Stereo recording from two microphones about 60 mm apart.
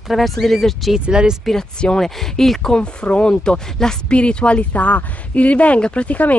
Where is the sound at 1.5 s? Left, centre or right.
Centre.